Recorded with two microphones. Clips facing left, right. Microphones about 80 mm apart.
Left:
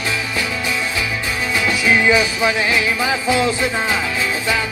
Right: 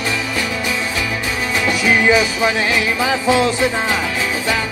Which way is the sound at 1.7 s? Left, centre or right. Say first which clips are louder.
Right 1 dB; centre.